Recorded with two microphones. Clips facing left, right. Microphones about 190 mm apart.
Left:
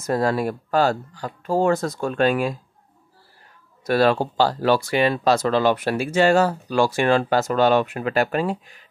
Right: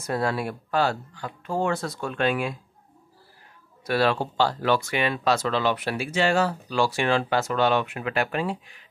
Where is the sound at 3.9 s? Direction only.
45° left (ahead or behind).